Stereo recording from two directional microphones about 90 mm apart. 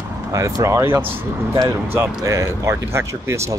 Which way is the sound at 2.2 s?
35° right (ahead or behind).